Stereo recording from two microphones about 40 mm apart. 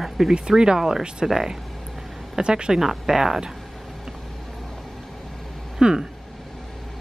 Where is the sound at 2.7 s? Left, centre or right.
Centre.